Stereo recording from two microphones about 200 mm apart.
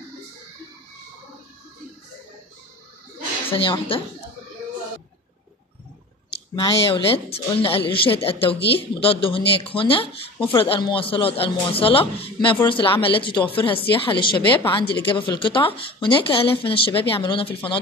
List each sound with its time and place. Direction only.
3.4 s a woman's voice: 25° left (ahead or behind)
6.5 s speech: 25° left (ahead or behind)